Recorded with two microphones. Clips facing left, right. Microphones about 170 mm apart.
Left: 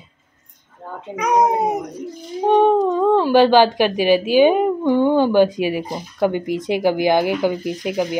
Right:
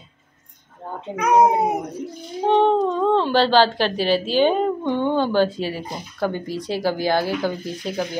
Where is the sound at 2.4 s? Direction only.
10° left (ahead or behind).